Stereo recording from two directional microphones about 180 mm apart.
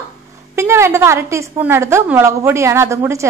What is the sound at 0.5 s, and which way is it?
A woman's voice, 15° right (ahead or behind).